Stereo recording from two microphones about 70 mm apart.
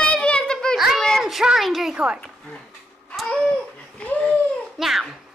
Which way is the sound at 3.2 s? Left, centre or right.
Centre.